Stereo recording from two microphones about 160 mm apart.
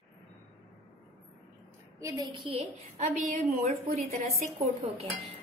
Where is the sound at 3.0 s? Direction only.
50° right (ahead or behind).